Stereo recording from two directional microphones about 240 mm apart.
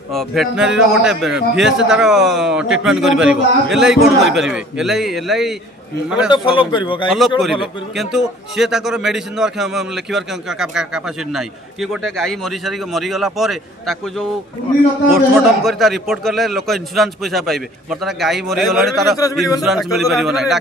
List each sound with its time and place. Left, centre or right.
0.1 s a man's voice: centre
6.3 s speech: centre
7.1 s a man's voice: centre